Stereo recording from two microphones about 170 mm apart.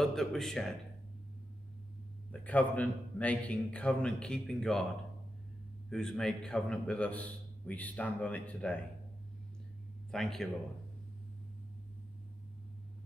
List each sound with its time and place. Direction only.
0.0 s speech: centre (ahead or behind)
2.3 s a man's voice: 10° left (ahead or behind)
5.9 s a man's voice: 5° left (ahead or behind)
10.1 s speech: centre (ahead or behind)